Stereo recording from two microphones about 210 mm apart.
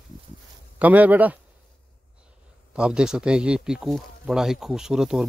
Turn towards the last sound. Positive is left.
turn(degrees=0)  # may be behind; listen again after turning